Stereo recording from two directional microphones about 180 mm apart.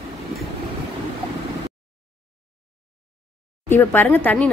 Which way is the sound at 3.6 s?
10° left (ahead or behind).